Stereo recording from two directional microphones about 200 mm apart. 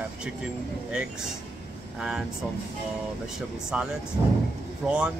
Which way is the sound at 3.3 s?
5° right (ahead or behind).